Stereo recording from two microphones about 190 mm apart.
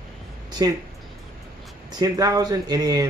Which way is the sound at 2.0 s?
20° right (ahead or behind).